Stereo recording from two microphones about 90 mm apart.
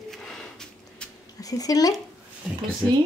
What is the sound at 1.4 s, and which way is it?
Speech, 40° left (ahead or behind).